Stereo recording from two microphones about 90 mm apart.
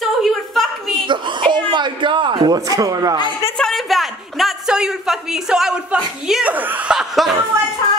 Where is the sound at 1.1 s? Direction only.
60° right (ahead or behind).